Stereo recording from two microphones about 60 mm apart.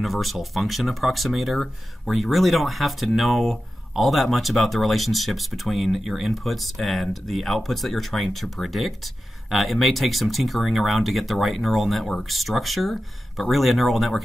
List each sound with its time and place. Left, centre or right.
0.0 s speech: centre